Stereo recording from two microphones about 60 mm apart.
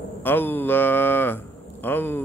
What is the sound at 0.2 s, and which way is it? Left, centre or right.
Speech, left.